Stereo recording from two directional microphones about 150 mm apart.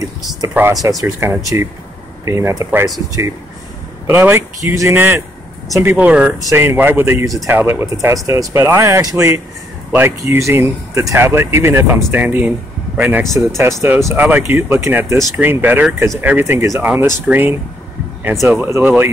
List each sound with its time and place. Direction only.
0.8 s speech: 15° right (ahead or behind)
4.1 s speech: 15° right (ahead or behind)